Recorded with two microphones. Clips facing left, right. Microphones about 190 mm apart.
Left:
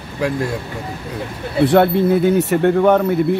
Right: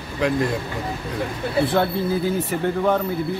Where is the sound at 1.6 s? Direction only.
70° left (ahead or behind).